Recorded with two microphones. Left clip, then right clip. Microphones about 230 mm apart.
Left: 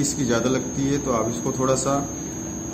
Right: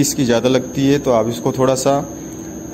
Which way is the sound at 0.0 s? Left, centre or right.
Right.